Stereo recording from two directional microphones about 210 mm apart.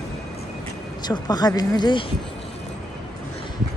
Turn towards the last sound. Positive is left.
turn(degrees=20)  # may be behind; listen again after turning